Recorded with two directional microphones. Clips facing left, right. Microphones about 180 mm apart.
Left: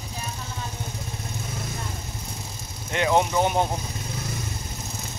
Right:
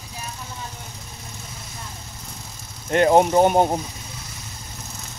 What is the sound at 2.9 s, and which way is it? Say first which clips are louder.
Speech: right 6 dB; 45° right (ahead or behind).